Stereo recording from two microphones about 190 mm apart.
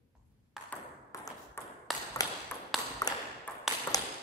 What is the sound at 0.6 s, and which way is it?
Ping, 15° left (ahead or behind).